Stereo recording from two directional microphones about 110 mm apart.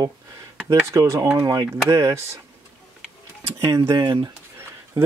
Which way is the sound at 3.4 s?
30° right (ahead or behind).